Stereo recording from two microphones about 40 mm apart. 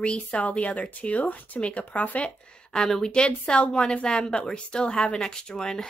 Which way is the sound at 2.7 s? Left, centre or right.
Centre.